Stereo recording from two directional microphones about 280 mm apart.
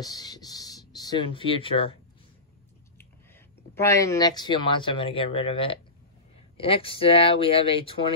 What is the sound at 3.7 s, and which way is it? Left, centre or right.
Speech, centre.